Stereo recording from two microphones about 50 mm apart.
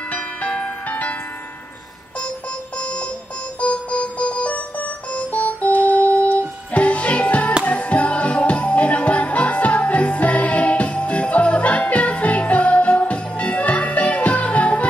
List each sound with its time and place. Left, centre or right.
0.1 s music: left
2.8 s music: left